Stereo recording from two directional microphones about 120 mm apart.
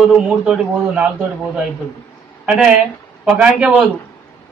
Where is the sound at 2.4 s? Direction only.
5° right (ahead or behind).